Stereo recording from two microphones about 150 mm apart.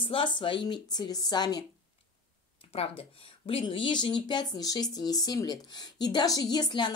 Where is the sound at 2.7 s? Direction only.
40° left (ahead or behind).